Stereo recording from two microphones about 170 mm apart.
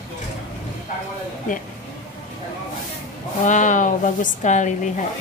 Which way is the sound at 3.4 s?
45° left (ahead or behind).